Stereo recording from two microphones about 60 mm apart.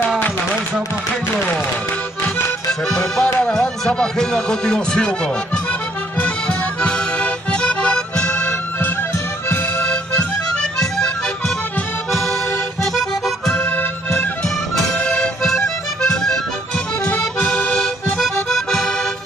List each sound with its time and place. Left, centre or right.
2.2 s accordion: left
2.9 s music: centre
12.1 s accordion: centre
13.6 s accordion: left
15.1 s accordion: centre
18.1 s music: centre